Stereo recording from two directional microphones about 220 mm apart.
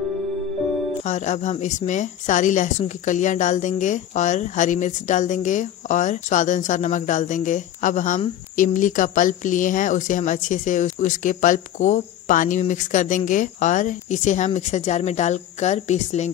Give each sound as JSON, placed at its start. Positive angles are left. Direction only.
{"t": 1.0, "sound": "a woman's voice", "side_deg": 35}